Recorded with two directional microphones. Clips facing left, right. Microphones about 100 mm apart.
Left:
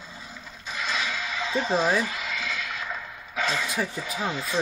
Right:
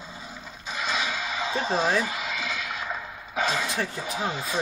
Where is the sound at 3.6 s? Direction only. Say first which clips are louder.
Even; 5° left (ahead or behind).